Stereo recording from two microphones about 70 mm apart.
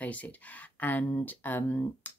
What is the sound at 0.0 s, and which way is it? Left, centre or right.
Speech, left.